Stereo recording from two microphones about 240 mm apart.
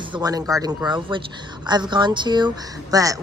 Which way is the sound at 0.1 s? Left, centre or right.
Centre.